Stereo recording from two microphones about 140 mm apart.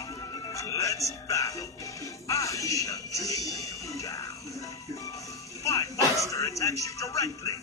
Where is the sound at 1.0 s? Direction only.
20° left (ahead or behind).